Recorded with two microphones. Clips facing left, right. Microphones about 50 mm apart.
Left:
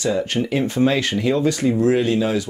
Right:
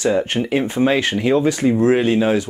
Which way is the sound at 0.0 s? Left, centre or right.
Right.